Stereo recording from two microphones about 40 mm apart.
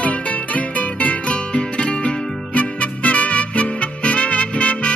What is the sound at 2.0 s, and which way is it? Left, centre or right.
Music, left.